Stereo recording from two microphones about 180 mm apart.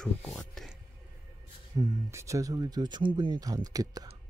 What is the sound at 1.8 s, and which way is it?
Speech, 15° right (ahead or behind).